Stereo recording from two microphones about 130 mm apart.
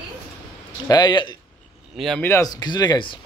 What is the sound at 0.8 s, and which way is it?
Speech, 30° left (ahead or behind).